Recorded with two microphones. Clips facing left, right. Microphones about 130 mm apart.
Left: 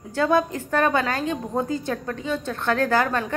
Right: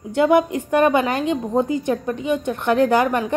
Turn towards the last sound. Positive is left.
turn(degrees=-15)  # may be behind; listen again after turning